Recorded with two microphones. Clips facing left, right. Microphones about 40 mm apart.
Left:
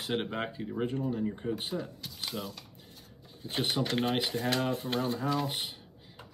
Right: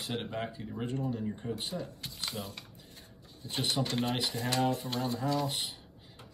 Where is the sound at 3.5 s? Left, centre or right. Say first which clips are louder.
Left 2 dB; left.